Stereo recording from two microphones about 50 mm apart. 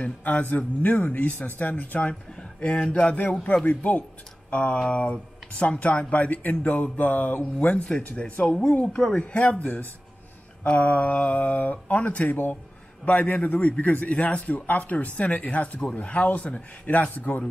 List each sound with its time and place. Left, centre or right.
0.0 s speech: left